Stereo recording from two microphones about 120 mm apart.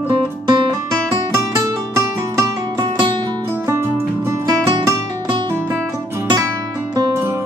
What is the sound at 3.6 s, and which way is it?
Music, 20° right (ahead or behind).